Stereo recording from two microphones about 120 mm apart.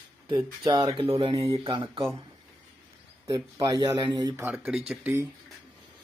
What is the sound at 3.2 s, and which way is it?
Speech, 30° right (ahead or behind).